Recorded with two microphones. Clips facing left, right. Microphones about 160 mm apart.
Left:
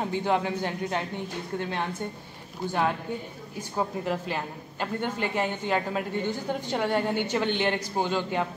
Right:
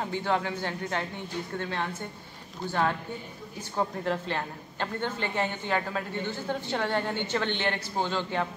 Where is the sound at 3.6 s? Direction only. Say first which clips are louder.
Left 1 dB; 10° left (ahead or behind).